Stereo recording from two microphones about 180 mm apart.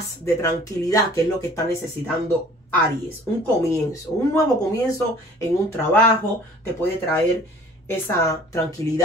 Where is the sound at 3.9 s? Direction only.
20° left (ahead or behind).